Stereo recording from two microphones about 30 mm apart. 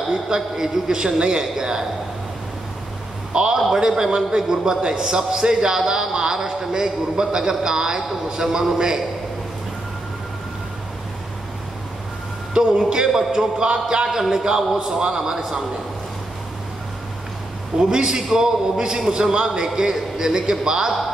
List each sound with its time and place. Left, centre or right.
0.1 s a man's voice: right
3.3 s a man's voice: right
3.7 s a man's voice: centre
12.5 s a man's voice: right
17.7 s a man's voice: right